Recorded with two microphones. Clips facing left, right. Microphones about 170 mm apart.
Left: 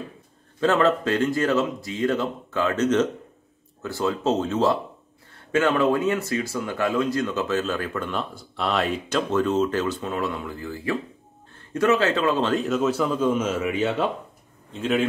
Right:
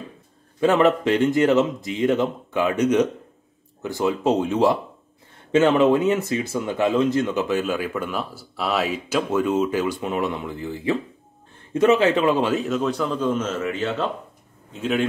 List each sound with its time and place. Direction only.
0.6 s a man's voice: 15° right (ahead or behind); by 14.0 s 10° left (ahead or behind)
14.7 s a man's voice: centre (ahead or behind)